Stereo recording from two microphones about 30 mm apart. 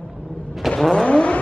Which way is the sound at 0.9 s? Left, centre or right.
Left.